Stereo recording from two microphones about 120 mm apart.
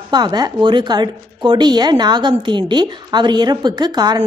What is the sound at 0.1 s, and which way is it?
A woman's voice, 35° right (ahead or behind).